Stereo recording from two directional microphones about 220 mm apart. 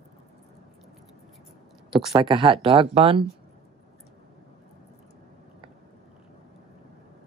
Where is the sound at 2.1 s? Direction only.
20° right (ahead or behind).